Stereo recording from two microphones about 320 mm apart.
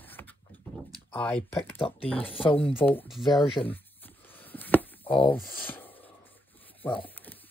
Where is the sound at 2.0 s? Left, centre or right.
Centre.